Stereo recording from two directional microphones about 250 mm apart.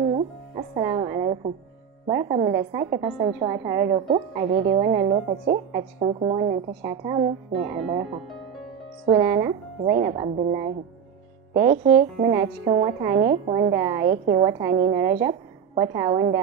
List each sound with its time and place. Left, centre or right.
0.7 s music: centre
2.0 s a woman's voice: centre
5.0 s a woman's voice: right
9.1 s a woman's voice: centre
11.5 s a woman's voice: centre